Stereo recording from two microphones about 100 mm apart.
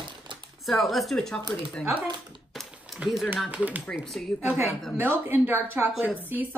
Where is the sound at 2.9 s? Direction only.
5° right (ahead or behind).